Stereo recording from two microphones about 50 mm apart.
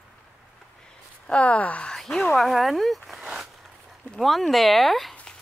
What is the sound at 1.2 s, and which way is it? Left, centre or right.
Speech, left.